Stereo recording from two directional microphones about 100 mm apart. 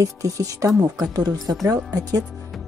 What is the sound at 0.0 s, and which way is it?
Speech, 35° right (ahead or behind).